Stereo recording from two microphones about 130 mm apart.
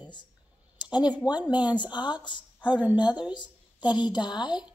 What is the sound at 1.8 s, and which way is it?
A woman's voice, 35° left (ahead or behind).